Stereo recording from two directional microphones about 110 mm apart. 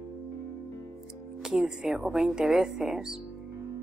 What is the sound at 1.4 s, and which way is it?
Speech, 5° right (ahead or behind).